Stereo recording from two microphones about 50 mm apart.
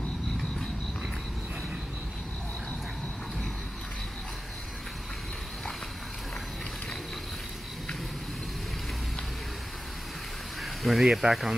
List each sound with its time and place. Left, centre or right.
10.6 s speech: centre